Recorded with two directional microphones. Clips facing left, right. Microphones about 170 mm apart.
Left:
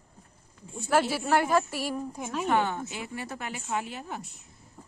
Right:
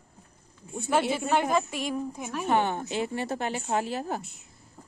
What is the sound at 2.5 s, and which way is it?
Speech, 20° right (ahead or behind).